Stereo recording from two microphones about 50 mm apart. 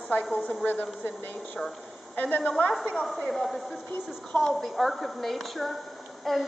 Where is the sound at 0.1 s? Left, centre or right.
Left.